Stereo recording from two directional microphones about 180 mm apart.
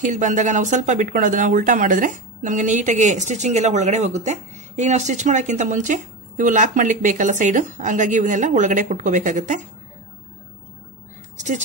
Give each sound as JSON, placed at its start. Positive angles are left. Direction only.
{"t": 0.0, "sound": "speech", "side_deg": -45}